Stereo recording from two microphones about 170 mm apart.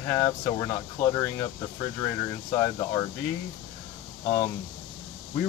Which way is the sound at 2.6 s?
20° left (ahead or behind).